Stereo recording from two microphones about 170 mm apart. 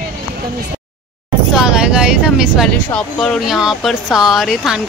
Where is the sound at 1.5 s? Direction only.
5° right (ahead or behind).